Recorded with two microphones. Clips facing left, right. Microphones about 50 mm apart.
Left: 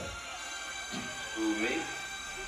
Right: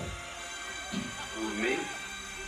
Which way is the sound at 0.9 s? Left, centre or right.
Centre.